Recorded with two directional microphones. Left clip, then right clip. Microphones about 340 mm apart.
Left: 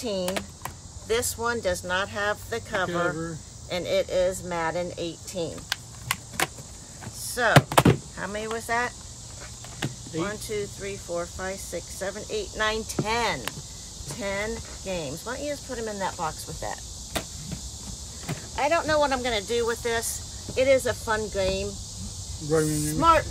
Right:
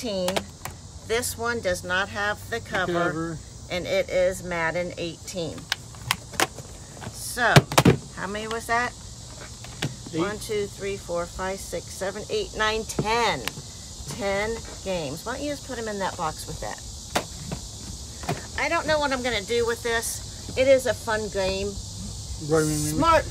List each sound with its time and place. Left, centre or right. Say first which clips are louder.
0.0 s speech: right 2 dB; centre
9.8 s a sound: right 1 dB; centre
10.2 s speech: right 3 dB; centre
17.1 s cricket: right 5 dB; centre
18.3 s vehicle: right 7 dB; centre
18.6 s speech: left 1 dB; centre
22.8 s speech: left 2 dB; centre